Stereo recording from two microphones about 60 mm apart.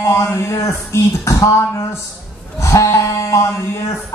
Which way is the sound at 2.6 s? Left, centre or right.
Left.